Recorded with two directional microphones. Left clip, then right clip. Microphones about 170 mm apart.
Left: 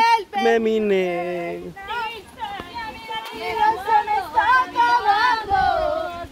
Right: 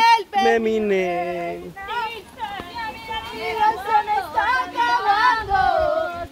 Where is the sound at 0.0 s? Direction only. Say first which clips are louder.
Right 2 dB; 40° right (ahead or behind).